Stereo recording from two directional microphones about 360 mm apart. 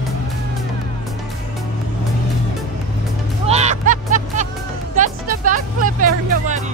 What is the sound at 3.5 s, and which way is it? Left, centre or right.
Music, centre.